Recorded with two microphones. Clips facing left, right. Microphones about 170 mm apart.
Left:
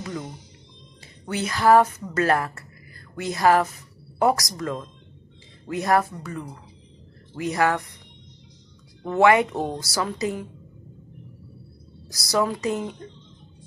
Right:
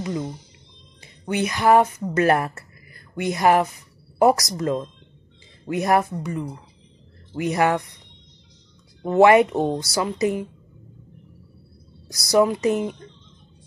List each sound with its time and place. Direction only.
0.0 s a woman's voice: 20° right (ahead or behind)
9.0 s a woman's voice: 25° right (ahead or behind)
12.1 s a woman's voice: 20° right (ahead or behind)